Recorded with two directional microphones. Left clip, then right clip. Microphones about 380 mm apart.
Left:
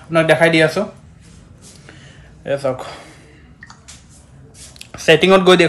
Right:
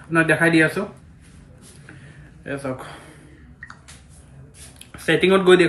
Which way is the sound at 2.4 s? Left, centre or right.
Centre.